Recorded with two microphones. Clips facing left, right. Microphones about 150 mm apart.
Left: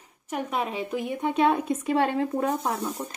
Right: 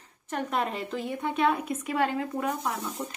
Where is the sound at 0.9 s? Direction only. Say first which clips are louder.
Left 3 dB; 15° left (ahead or behind); by 2.9 s 35° left (ahead or behind).